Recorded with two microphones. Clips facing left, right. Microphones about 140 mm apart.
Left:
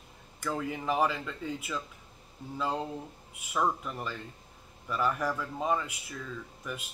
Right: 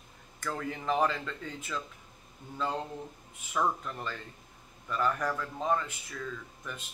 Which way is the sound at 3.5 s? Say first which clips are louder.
Left 1 dB; 10° left (ahead or behind).